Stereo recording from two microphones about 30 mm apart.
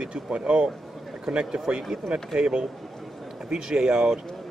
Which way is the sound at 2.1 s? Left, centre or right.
Right.